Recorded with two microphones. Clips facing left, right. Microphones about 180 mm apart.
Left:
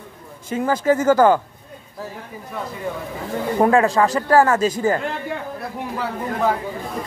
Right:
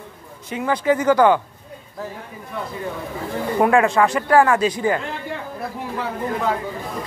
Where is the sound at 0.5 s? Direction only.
40° left (ahead or behind).